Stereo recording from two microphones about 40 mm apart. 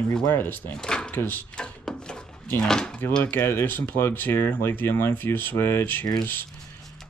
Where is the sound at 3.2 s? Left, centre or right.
Left.